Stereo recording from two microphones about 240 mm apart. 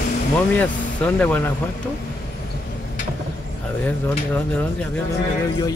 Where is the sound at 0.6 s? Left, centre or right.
Centre.